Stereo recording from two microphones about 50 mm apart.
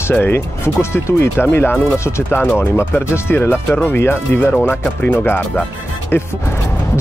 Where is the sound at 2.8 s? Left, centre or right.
Left.